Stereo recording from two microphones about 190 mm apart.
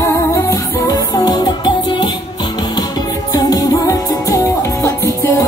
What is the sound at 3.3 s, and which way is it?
Music, 20° left (ahead or behind).